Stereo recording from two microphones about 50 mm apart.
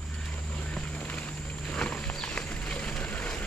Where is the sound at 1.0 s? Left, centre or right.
Left.